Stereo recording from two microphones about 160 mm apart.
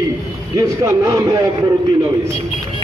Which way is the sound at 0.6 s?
20° right (ahead or behind).